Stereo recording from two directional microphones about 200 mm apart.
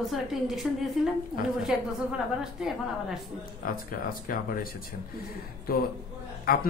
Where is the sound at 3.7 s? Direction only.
45° left (ahead or behind).